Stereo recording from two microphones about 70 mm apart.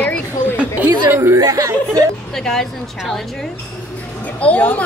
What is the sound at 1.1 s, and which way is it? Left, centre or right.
Speech, right.